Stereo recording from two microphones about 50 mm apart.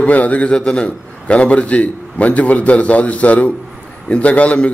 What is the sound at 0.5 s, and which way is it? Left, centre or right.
A man's voice, centre.